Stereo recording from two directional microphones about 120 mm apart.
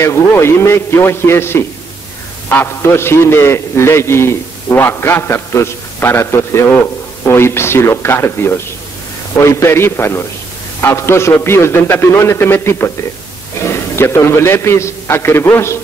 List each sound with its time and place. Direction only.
0.0 s a man's voice: 20° left (ahead or behind)